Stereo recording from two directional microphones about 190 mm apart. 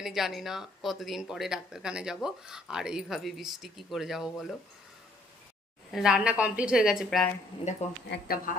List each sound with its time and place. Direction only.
0.0 s speech: centre (ahead or behind)
5.9 s speech: 5° right (ahead or behind)
8.1 s speech: 50° left (ahead or behind)